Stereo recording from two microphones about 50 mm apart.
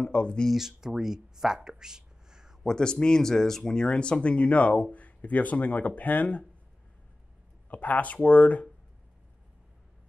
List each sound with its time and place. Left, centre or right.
0.0 s speech: left
0.5 s speech: centre
2.6 s speech: centre; by 6.4 s left
7.7 s speech: left